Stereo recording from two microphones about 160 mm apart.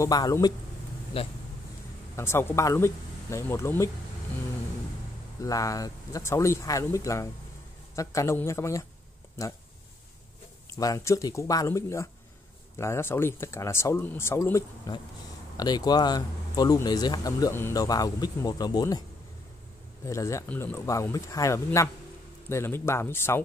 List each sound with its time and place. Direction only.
0.0 s speech: 20° left (ahead or behind)
1.1 s speech: 35° left (ahead or behind)
2.1 s speech: 15° left (ahead or behind)
5.4 s speech: 20° left (ahead or behind)
10.7 s speech: 20° left (ahead or behind)
20.1 s speech: 20° left (ahead or behind)